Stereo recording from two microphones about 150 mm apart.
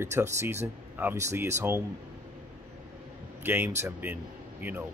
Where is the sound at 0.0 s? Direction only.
15° right (ahead or behind).